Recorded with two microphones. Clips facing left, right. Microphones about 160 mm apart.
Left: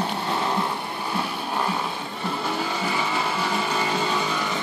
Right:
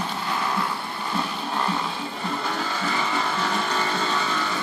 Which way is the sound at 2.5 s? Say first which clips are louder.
Left 2 dB; 10° left (ahead or behind).